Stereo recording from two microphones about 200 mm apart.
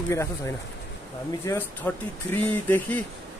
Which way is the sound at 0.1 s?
15° left (ahead or behind).